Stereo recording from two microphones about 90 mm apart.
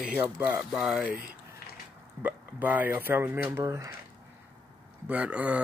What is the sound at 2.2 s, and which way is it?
Speech, 20° right (ahead or behind).